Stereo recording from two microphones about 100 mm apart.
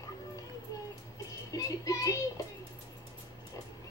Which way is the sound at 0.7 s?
35° left (ahead or behind).